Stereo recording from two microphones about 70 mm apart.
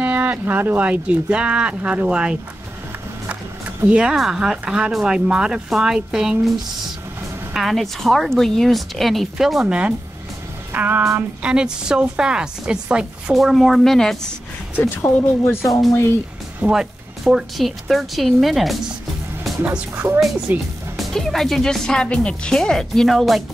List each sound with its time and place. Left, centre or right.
0.0 s speech: right
3.9 s speech: centre
7.5 s speech: centre
10.7 s music: right
11.4 s speech: centre
13.4 s speech: centre
14.8 s speech: left
16.6 s speech: centre
19.6 s speech: right
21.1 s speech: centre